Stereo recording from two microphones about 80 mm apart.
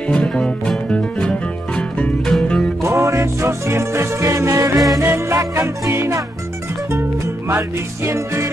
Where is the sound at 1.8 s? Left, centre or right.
Centre.